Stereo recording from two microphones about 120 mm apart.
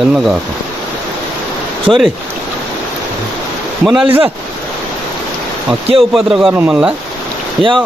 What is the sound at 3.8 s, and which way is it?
Speech, 5° right (ahead or behind).